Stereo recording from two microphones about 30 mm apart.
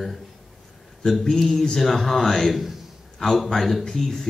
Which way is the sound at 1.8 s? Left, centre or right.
Centre.